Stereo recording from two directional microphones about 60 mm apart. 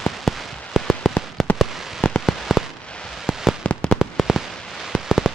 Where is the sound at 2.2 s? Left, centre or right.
Centre.